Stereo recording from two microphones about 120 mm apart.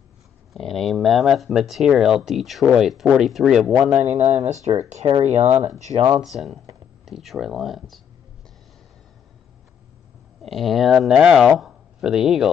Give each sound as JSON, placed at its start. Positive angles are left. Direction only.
{"t": 0.5, "sound": "speech", "side_deg": 5}
{"t": 4.0, "sound": "speech", "side_deg": -70}
{"t": 6.2, "sound": "speech", "side_deg": 0}
{"t": 10.4, "sound": "speech", "side_deg": 0}
{"t": 11.6, "sound": "a sound", "side_deg": -5}